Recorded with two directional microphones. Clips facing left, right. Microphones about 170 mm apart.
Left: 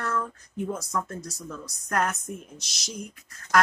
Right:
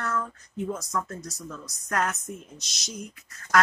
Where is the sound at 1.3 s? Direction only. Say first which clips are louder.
Left 1 dB; centre (ahead or behind).